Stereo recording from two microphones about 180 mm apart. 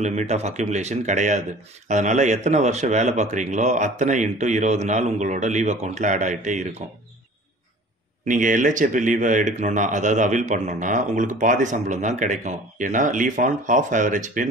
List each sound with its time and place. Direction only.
0.0 s speech: 40° right (ahead or behind)
8.3 s speech: 45° right (ahead or behind)